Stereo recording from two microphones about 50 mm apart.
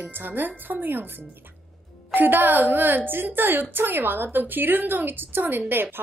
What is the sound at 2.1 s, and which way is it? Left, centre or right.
Speech, right.